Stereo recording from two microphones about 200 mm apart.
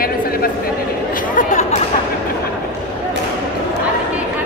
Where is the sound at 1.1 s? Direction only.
40° left (ahead or behind).